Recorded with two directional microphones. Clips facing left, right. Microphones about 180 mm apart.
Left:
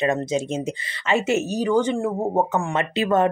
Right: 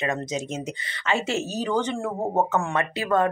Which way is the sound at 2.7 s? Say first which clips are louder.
Left 4 dB; 20° left (ahead or behind).